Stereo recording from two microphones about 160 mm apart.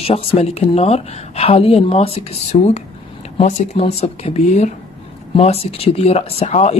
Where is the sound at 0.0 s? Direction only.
35° left (ahead or behind).